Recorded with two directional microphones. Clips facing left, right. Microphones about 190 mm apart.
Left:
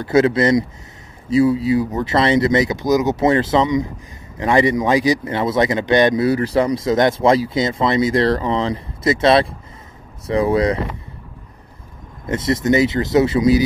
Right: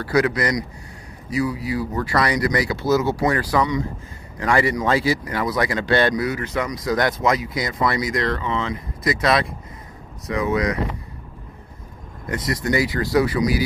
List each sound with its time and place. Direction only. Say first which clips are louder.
0.0 s speech: left 5 dB; 25° left (ahead or behind)
6.2 s speech: left 8 dB; 35° left (ahead or behind)
12.3 s speech: left 6 dB; 25° left (ahead or behind)